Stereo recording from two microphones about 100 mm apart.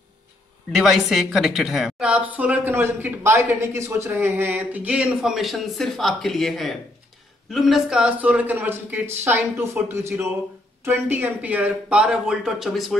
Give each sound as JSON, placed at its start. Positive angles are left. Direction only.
{"t": 0.7, "sound": "a woman's voice", "side_deg": 0}